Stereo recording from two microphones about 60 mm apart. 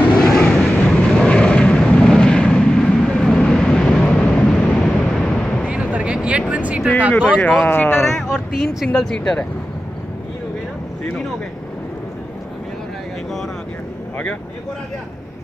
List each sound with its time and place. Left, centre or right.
0.0 s vehicle: centre
5.7 s a sound: right
7.2 s speech: centre
7.6 s speech: left
7.9 s speech: left
8.2 s speech: centre
8.9 s speech: centre